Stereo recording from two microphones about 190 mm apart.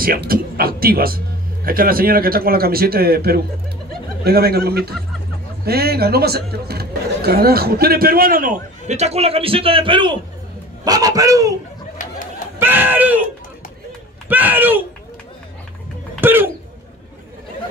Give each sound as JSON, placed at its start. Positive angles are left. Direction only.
{"t": 0.0, "sound": "speech", "side_deg": -50}
{"t": 12.5, "sound": "speech", "side_deg": -10}
{"t": 14.3, "sound": "speech", "side_deg": -10}
{"t": 16.2, "sound": "music", "side_deg": -10}